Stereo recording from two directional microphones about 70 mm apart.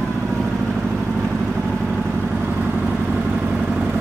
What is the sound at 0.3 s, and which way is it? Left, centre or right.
Vehicle, centre.